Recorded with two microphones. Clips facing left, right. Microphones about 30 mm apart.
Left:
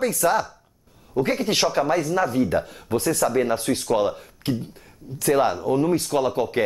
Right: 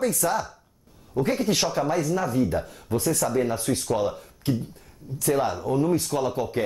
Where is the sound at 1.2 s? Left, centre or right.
Centre.